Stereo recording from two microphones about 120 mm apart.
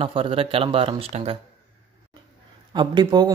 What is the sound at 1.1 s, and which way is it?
Speech, 65° right (ahead or behind).